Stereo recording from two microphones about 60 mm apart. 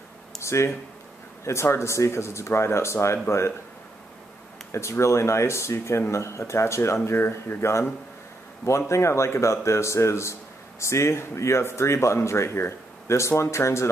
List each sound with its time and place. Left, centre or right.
0.4 s speech: left
4.7 s speech: left